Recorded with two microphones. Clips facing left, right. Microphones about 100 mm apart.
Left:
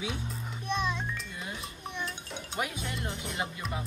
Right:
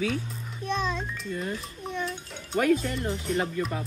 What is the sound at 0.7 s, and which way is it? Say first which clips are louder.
Music: right 3 dB; 15° left (ahead or behind).